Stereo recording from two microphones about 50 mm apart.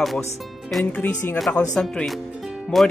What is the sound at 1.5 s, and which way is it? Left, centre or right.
Speech, left.